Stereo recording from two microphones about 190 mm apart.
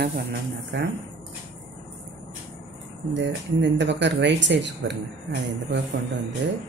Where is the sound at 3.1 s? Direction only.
70° right (ahead or behind).